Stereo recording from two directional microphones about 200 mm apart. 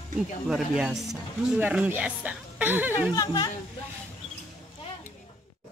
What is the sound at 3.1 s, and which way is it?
Speech, 20° left (ahead or behind).